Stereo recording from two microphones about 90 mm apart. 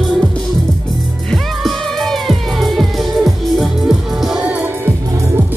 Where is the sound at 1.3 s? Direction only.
5° left (ahead or behind).